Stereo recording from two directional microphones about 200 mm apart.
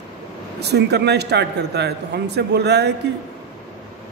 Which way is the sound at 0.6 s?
55° right (ahead or behind).